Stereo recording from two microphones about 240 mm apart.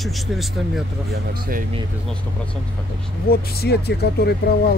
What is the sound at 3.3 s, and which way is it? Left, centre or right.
Speech, left.